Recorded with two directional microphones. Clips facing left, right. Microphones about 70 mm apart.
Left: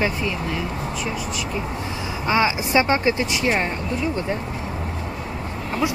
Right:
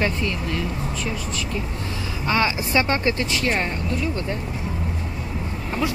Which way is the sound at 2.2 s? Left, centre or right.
Centre.